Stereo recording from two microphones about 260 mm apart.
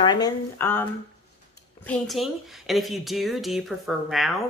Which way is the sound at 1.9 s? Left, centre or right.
Centre.